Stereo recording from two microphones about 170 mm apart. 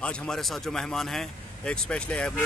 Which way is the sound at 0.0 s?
5° left (ahead or behind).